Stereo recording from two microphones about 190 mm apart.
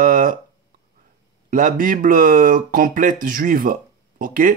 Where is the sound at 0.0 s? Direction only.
45° right (ahead or behind).